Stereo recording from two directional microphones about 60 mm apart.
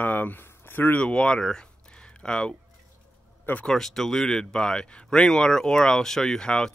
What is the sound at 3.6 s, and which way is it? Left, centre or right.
Speech, centre.